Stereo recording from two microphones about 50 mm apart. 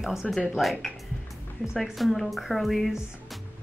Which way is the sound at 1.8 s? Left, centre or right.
Centre.